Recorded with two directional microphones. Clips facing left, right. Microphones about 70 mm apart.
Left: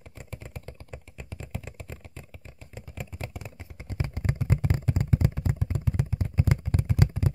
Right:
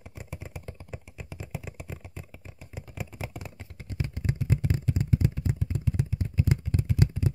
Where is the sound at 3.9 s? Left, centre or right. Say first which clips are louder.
Left 1 dB; left.